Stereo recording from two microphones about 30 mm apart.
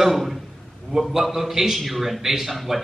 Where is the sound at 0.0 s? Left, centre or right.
Centre.